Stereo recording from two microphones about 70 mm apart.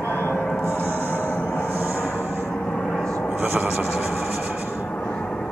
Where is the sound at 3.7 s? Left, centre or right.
Centre.